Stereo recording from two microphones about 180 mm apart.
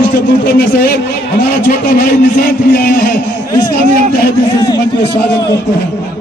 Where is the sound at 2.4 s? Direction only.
60° left (ahead or behind).